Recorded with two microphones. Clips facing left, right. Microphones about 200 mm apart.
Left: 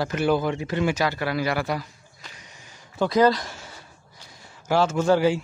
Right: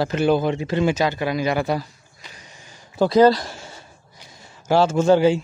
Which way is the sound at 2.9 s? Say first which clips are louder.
Right 5 dB; 35° right (ahead or behind).